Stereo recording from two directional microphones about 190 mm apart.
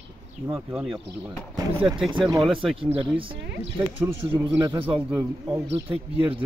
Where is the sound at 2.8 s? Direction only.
30° right (ahead or behind).